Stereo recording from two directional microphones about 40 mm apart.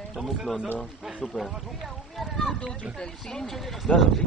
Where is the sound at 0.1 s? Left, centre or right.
Centre.